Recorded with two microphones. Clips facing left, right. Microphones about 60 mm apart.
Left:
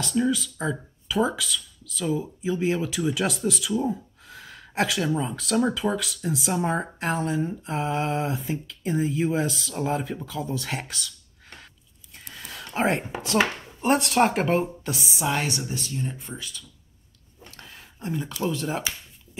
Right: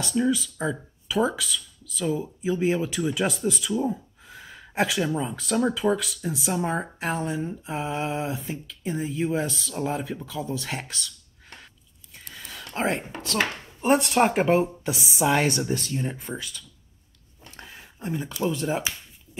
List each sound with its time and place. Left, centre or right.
0.0 s speech: centre
3.8 s gasp: centre
4.4 s speech: centre
12.2 s a sound: centre
13.7 s speech: centre
14.6 s speech: right
17.6 s a sound: centre